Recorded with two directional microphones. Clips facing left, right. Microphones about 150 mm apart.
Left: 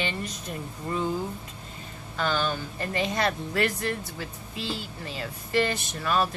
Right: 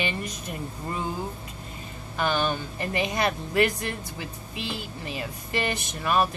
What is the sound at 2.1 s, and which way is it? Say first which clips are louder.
Speech: right 2 dB; 15° right (ahead or behind).